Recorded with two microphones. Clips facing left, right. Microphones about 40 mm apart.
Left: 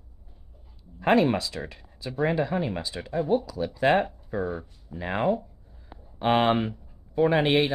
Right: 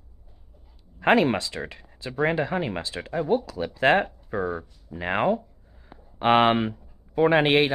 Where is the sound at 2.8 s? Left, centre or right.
Right.